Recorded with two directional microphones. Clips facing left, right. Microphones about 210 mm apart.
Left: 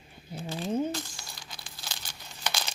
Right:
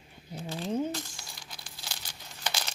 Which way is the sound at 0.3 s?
10° left (ahead or behind).